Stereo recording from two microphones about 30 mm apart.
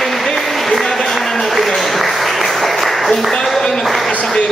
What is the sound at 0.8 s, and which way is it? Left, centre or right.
Music, centre.